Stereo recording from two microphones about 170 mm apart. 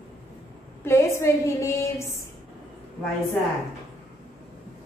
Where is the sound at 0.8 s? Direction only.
15° left (ahead or behind).